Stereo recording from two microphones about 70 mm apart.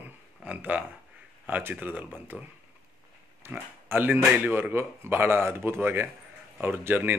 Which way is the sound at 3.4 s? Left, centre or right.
Right.